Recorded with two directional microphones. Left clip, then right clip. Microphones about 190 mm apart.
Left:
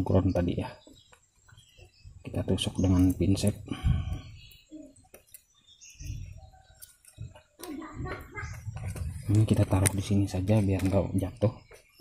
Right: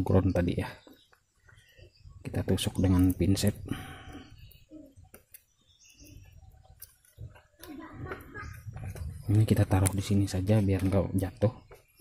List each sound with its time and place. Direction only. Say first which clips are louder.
0.0 s speech: even; 25° right (ahead or behind)
2.2 s speech: left 1 dB; 25° right (ahead or behind)
9.4 s speech: left 1 dB; 25° right (ahead or behind)